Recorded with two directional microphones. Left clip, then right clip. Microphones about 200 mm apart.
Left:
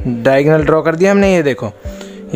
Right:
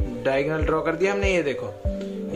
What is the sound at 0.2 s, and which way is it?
A man's voice, 50° left (ahead or behind).